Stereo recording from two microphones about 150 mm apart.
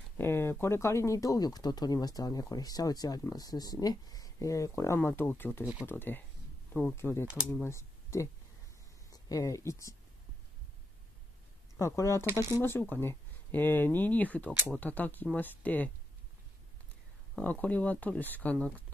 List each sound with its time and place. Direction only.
0.2 s speech: 15° left (ahead or behind)
11.7 s speech: 20° left (ahead or behind)
17.4 s speech: 10° left (ahead or behind)